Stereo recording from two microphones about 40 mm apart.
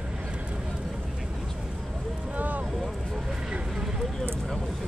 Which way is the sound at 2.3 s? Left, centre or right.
Right.